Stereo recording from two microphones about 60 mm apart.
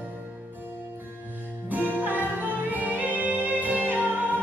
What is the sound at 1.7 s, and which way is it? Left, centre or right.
Music, right.